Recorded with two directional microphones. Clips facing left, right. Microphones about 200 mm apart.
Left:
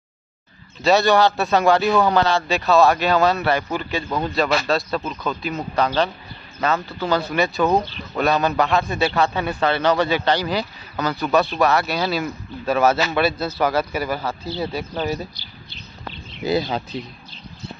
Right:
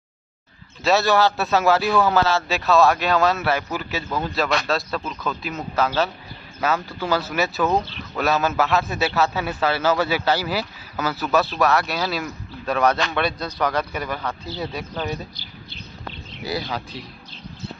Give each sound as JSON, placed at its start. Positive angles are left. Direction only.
{"t": 0.8, "sound": "speech", "side_deg": 0}
{"t": 16.4, "sound": "speech", "side_deg": 25}